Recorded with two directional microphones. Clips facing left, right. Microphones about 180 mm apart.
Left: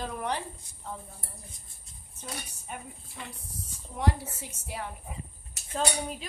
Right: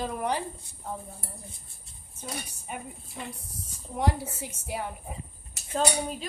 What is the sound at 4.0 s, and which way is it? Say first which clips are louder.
Speech: right 2 dB; 20° right (ahead or behind).